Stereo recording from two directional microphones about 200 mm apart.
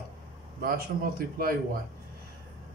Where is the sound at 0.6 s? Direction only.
45° right (ahead or behind).